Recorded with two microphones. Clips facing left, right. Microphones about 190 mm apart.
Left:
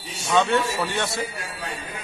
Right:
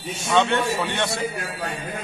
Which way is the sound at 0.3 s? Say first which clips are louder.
Even; 5° left (ahead or behind).